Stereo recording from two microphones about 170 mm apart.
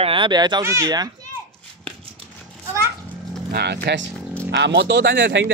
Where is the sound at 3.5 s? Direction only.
75° right (ahead or behind).